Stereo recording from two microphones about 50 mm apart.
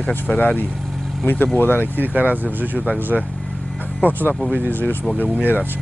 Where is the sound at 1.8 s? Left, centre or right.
Right.